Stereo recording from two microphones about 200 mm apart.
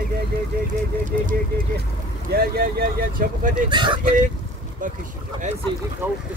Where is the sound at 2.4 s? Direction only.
50° right (ahead or behind).